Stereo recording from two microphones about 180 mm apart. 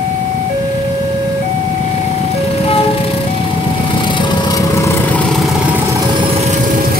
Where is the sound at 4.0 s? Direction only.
25° left (ahead or behind).